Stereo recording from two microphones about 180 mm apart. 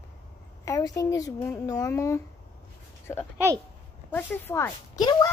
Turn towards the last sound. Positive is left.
turn(degrees=25)  # may be behind; listen again after turning